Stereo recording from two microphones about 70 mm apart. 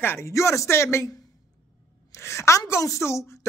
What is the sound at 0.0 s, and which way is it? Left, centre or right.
Speech, left.